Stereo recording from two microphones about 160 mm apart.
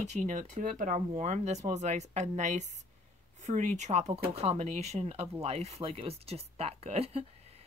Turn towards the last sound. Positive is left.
turn(degrees=-40)  # may be behind; listen again after turning